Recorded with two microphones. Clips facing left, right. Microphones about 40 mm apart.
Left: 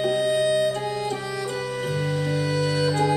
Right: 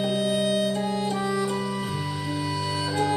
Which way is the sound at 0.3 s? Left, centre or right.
Right.